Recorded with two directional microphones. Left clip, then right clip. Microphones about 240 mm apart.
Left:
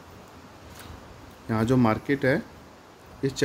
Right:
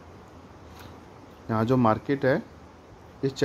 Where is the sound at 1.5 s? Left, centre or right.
Centre.